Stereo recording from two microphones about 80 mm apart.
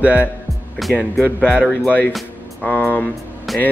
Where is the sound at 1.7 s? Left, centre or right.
Left.